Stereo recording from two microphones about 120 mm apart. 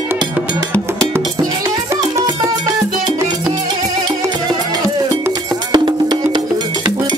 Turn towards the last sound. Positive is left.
turn(degrees=-40)  # may be behind; listen again after turning